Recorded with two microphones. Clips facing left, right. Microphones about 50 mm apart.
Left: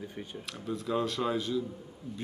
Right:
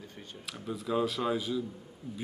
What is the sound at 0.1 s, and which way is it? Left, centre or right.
Speech, centre.